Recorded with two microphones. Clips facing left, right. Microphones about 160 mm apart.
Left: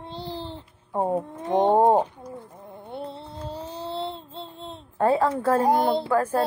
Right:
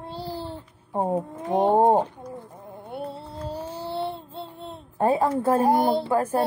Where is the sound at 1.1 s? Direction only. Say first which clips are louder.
Left 1 dB; 5° right (ahead or behind).